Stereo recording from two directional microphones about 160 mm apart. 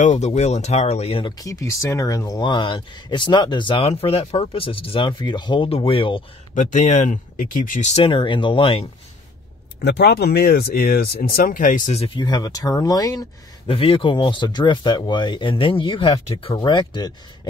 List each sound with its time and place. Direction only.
0.0 s speech: 45° left (ahead or behind)
1.4 s speech: 20° left (ahead or behind)
6.5 s speech: 50° left (ahead or behind); by 8.8 s 35° left (ahead or behind)
9.8 s speech: 90° left; by 12.2 s 40° left (ahead or behind)
12.2 s speech: 25° left (ahead or behind)
13.7 s speech: 35° left (ahead or behind)